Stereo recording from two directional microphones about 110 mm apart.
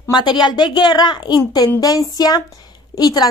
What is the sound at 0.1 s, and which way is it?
A woman's voice, 45° left (ahead or behind).